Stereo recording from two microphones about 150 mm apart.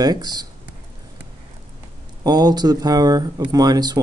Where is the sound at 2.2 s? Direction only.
25° right (ahead or behind).